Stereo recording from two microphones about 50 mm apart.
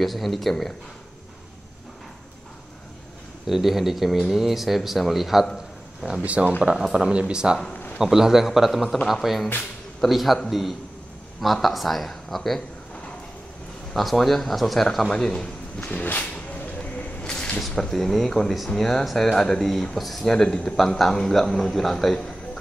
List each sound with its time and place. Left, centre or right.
0.0 s speech: centre
3.4 s speech: centre
6.2 s speech: right
6.6 s speech: centre
13.9 s speech: centre
15.8 s a sound: left
17.2 s a sound: centre
17.6 s speech: centre
20.3 s speech: centre
22.1 s a sound: centre